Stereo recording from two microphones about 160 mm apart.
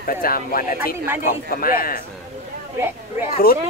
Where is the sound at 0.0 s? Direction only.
65° left (ahead or behind).